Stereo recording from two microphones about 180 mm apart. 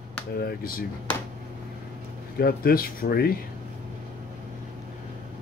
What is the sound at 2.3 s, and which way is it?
Speech, 55° left (ahead or behind).